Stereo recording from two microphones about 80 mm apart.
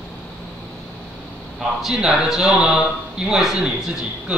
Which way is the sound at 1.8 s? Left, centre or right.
Centre.